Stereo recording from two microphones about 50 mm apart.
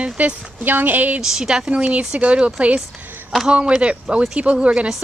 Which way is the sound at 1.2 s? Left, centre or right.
Centre.